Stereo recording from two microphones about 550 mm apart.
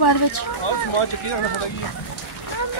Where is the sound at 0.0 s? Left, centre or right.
Left.